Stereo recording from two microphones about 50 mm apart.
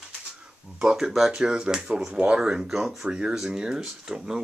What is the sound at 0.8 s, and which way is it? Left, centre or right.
Speech, centre.